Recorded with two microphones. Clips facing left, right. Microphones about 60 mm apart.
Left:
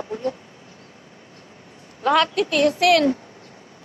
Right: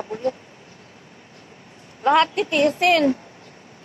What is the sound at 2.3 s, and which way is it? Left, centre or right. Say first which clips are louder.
Speech: even; right.